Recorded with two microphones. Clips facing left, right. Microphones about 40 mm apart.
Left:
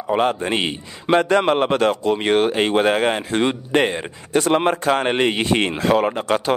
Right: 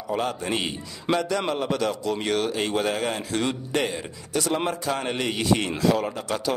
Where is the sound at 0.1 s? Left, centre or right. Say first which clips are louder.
Left 7 dB; left.